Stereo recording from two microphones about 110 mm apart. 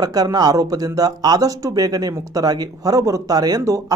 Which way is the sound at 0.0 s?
35° right (ahead or behind).